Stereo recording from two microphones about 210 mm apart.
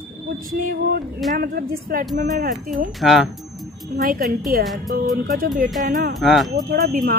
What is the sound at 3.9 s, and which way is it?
Speech, 45° right (ahead or behind).